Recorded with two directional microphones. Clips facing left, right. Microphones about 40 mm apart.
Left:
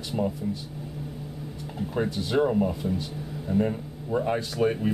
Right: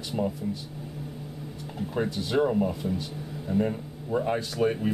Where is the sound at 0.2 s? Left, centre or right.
Centre.